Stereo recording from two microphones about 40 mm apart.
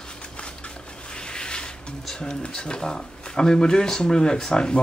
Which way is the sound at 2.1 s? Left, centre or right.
Centre.